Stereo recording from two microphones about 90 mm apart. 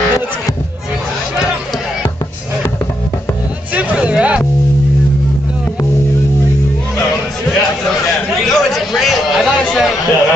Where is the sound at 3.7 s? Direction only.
15° right (ahead or behind).